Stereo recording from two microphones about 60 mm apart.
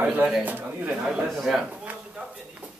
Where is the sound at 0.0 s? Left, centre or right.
Right.